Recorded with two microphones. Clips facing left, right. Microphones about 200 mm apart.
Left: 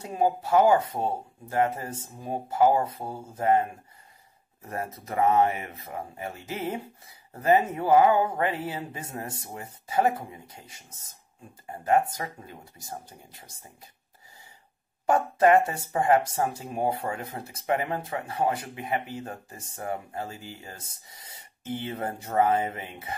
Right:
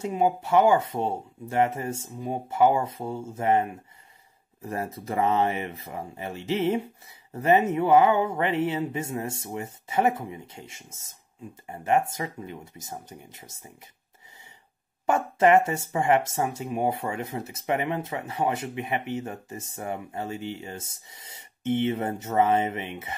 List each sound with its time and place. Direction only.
0.0 s speech: 25° right (ahead or behind)
15.0 s speech: 25° right (ahead or behind)